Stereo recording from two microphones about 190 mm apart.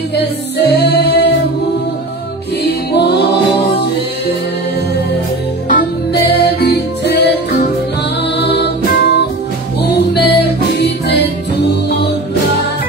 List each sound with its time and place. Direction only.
0.1 s music: 60° left (ahead or behind)
2.9 s music: 60° left (ahead or behind)
6.2 s music: 60° left (ahead or behind)